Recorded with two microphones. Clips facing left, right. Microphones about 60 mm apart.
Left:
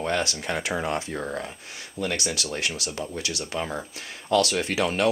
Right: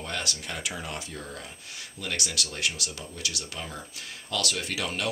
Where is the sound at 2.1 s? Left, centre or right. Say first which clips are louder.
Left 1 dB; left.